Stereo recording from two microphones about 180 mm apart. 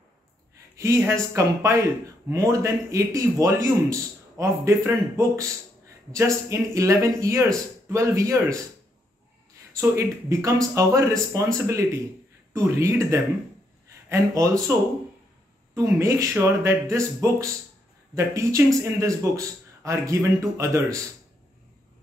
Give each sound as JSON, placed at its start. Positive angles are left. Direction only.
{"t": 0.7, "sound": "speech", "side_deg": -15}
{"t": 9.8, "sound": "speech", "side_deg": -15}